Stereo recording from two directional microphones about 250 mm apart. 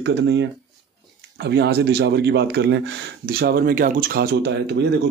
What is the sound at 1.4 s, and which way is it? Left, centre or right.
Speech, right.